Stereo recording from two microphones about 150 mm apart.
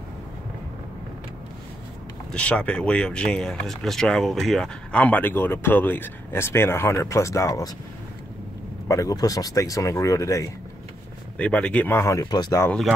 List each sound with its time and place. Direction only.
2.3 s speech: 5° left (ahead or behind)
8.8 s speech: 20° left (ahead or behind)
11.3 s speech: 10° left (ahead or behind); by 12.6 s 25° left (ahead or behind)